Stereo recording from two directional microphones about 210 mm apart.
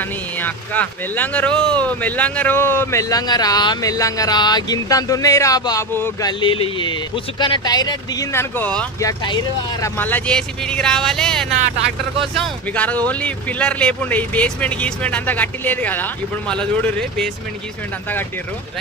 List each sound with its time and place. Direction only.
0.4 s speech: 10° left (ahead or behind)
6.4 s speech: 25° left (ahead or behind); by 9.1 s 10° left (ahead or behind)
9.2 s speech: 20° left (ahead or behind)
9.9 s speech: 10° left (ahead or behind)